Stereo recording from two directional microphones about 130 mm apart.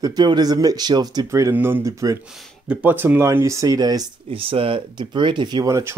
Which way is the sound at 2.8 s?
15° right (ahead or behind).